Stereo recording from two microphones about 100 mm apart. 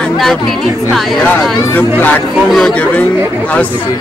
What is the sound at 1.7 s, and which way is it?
Speech, 20° left (ahead or behind).